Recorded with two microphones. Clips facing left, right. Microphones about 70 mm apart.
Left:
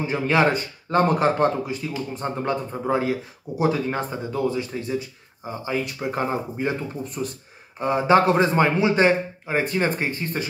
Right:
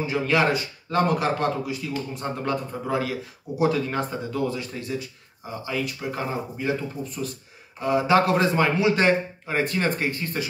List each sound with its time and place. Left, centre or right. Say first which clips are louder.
0.0 s a man's voice: left 2 dB; left
7.8 s speech: left 2 dB; left